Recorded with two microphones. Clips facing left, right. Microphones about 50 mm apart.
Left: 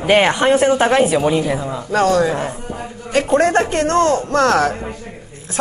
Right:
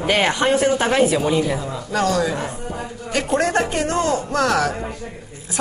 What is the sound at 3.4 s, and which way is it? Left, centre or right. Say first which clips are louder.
Speech: left 4 dB; left.